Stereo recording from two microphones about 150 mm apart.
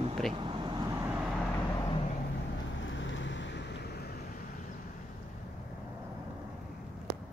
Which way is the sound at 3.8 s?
90° left.